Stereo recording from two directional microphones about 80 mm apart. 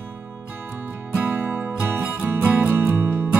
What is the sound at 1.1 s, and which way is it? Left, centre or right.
Music, centre.